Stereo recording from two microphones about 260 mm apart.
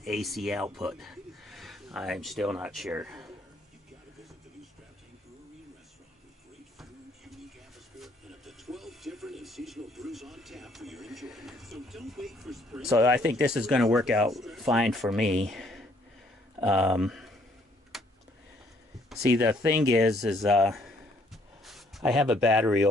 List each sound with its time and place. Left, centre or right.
0.0 s speech: centre
6.8 s music: centre
12.9 s speech: centre
15.2 s speech: right
15.5 s a sound: centre
16.6 s speech: centre
17.9 s vehicle: centre
19.0 s speech: centre
21.3 s a sound: centre